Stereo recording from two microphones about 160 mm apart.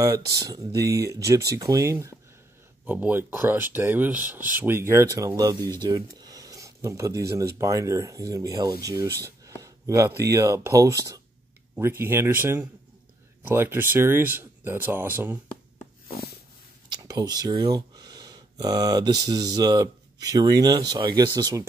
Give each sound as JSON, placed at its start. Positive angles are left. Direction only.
{"t": 0.0, "sound": "speech", "side_deg": -20}
{"t": 16.1, "sound": "snort", "side_deg": 75}
{"t": 16.9, "sound": "speech", "side_deg": -25}